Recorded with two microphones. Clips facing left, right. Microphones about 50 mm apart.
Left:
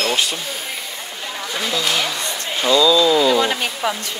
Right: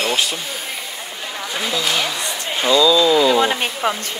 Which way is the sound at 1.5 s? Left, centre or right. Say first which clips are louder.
Even; centre.